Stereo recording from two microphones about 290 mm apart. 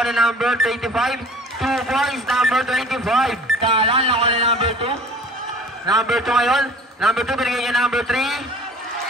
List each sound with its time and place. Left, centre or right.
0.0 s a man's voice: centre
3.6 s speech: centre
5.9 s a man's voice: centre